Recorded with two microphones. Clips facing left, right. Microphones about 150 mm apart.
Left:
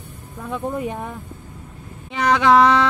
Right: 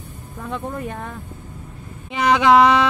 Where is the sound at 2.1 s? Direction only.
15° right (ahead or behind).